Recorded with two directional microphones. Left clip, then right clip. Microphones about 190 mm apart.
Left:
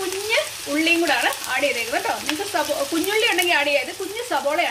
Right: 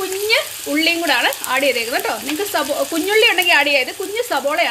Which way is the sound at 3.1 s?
50° right (ahead or behind).